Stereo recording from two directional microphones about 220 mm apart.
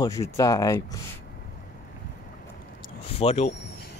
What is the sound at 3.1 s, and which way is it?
Speech, 25° left (ahead or behind).